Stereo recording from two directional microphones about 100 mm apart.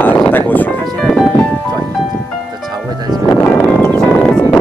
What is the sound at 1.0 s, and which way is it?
Music, centre (ahead or behind).